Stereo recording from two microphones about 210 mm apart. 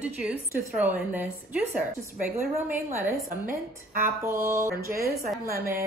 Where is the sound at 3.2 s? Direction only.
40° right (ahead or behind).